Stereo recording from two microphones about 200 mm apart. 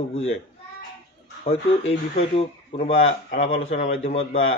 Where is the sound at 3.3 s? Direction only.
45° left (ahead or behind).